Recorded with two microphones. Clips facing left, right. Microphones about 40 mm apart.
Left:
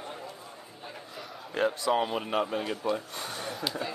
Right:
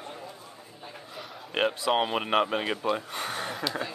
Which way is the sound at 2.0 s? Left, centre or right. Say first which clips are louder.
Right 3 dB; right.